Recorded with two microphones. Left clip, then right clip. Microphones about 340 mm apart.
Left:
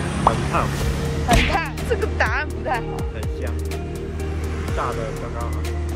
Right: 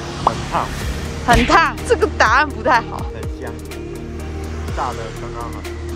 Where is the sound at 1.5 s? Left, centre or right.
Centre.